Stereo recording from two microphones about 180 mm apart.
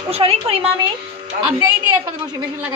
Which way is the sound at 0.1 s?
35° right (ahead or behind).